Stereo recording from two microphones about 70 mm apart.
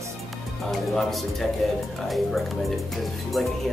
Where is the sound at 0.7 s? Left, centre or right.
Centre.